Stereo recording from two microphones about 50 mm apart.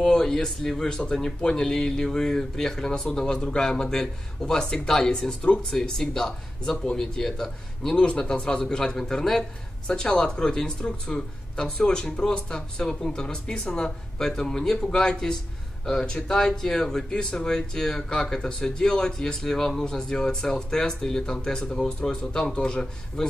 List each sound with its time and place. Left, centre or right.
0.0 s a man's voice: centre
5.4 s speech: left
5.7 s a man's voice: centre